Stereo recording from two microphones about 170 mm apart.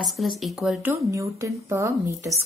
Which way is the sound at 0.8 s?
15° right (ahead or behind).